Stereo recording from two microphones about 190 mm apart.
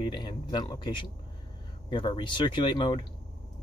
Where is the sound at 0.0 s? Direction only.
25° left (ahead or behind).